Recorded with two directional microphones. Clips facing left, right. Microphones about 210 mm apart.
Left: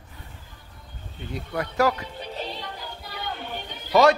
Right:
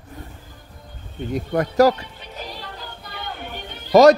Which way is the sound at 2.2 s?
30° left (ahead or behind).